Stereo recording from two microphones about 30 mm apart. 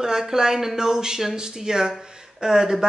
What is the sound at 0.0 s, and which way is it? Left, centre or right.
Speech, centre.